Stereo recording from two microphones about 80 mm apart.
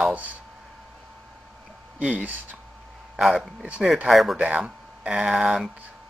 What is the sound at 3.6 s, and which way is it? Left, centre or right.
Speech, centre.